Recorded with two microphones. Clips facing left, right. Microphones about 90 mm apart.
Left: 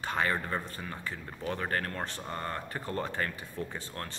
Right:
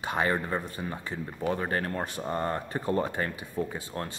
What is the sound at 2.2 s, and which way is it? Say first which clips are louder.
Speech: right 6 dB; 25° right (ahead or behind).